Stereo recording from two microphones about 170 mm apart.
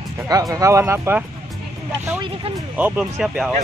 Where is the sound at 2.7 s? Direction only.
10° right (ahead or behind).